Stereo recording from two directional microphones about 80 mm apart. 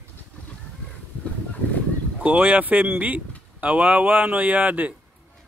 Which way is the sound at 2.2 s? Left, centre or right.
Centre.